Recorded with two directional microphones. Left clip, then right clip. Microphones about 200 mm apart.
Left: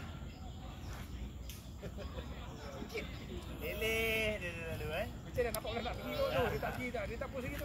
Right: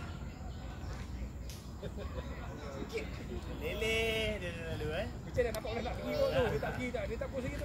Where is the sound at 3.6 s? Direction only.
25° left (ahead or behind).